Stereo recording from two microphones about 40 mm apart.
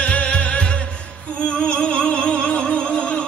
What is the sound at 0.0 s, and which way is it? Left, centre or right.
Music, left.